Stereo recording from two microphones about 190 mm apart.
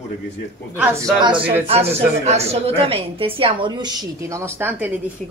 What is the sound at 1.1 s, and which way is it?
A woman's voice, 25° right (ahead or behind).